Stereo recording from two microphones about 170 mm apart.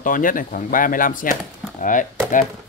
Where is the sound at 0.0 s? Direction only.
50° left (ahead or behind).